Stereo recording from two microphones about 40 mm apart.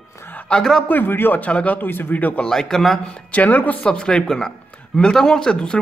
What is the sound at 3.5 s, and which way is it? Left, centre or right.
Speech, left.